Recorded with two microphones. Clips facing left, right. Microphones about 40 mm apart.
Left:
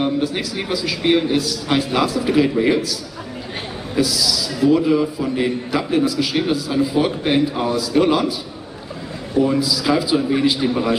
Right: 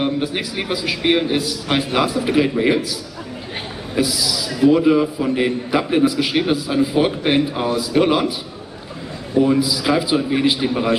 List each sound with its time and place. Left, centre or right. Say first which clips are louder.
0.0 s a man's voice: left 1 dB; right
3.9 s a man's voice: left 1 dB; centre
9.4 s a man's voice: right 1 dB; centre